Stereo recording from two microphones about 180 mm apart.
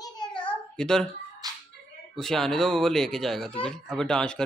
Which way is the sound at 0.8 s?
5° left (ahead or behind).